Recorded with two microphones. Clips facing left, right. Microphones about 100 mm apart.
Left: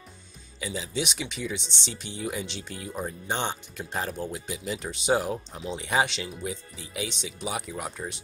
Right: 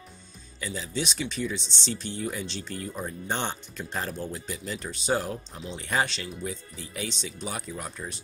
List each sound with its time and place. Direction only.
0.6 s speech: 15° left (ahead or behind)
8.0 s speech: 30° left (ahead or behind)